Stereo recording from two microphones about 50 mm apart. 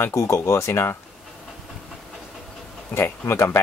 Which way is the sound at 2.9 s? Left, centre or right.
Left.